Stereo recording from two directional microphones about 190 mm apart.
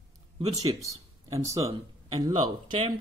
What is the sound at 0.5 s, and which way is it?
Speech, 15° right (ahead or behind).